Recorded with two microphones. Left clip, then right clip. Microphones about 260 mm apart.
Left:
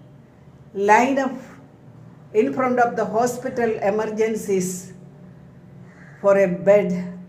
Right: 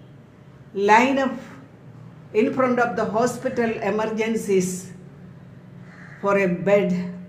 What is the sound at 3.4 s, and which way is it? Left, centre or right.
Speech, centre.